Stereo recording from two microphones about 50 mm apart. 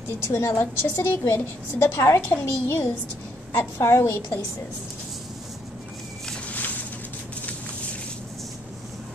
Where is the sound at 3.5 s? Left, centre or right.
Left.